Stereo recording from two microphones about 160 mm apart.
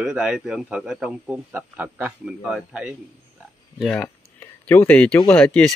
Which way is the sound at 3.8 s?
10° left (ahead or behind).